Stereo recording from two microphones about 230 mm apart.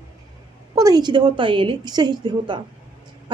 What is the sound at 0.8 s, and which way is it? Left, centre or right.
A woman's voice, centre.